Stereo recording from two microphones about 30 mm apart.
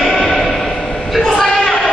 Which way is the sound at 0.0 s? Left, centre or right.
Centre.